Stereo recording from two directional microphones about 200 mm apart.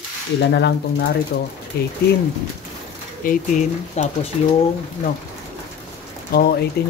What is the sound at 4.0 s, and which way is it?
Speech, 35° left (ahead or behind).